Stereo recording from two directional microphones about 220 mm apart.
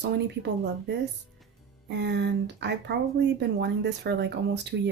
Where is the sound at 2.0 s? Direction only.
50° right (ahead or behind).